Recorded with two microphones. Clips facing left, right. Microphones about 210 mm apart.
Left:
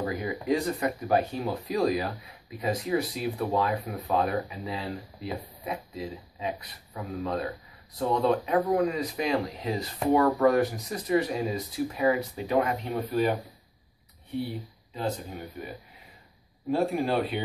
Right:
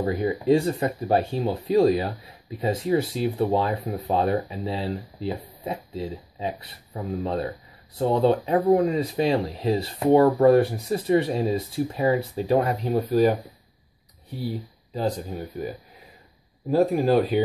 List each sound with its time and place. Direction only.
0.0 s speech: 30° right (ahead or behind)
15.0 s speech: 35° right (ahead or behind)
16.7 s speech: 40° right (ahead or behind)